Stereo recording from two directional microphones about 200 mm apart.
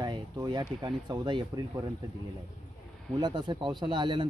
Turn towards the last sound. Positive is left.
turn(degrees=-25)  # may be behind; listen again after turning